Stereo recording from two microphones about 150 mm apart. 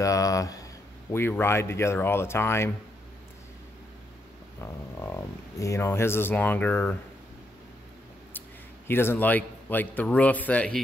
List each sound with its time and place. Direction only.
0.0 s a sound: 20° left (ahead or behind)
1.1 s speech: 15° left (ahead or behind)
4.6 s speech: 15° left (ahead or behind)
8.3 s a man's voice: 15° left (ahead or behind)